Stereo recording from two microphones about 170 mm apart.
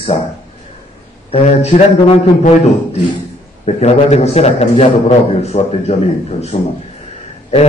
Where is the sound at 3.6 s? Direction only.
40° left (ahead or behind).